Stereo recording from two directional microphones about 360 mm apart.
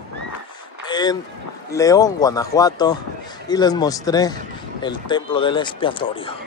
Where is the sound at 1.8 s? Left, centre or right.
Centre.